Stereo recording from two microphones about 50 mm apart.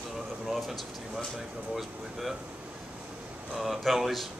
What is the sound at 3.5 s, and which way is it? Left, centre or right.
Speech, centre.